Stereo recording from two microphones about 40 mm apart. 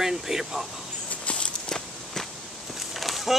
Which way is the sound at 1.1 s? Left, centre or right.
Left.